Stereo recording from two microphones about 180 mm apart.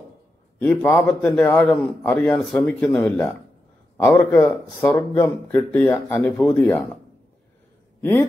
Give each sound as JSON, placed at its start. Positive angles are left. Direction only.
{"t": 0.6, "sound": "speech", "side_deg": 10}
{"t": 8.0, "sound": "speech", "side_deg": 10}